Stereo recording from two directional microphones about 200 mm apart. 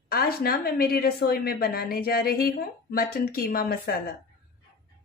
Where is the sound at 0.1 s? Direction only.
50° left (ahead or behind).